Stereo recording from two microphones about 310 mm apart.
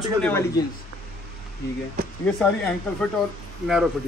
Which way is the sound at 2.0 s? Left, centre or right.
Right.